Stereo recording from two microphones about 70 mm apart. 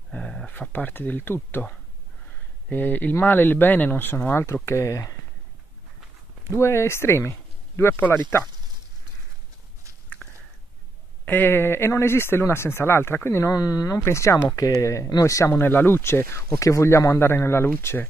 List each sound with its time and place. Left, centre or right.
0.1 s a sound: centre
0.5 s speech: left
2.7 s speech: left
4.6 s speech: left
6.5 s speech: left
10.2 s a sound: left
11.2 s speech: left
13.5 s speech: left
15.5 s speech: left